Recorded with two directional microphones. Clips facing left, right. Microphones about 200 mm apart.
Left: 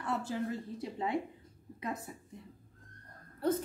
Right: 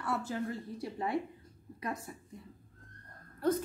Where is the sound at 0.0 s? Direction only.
20° left (ahead or behind).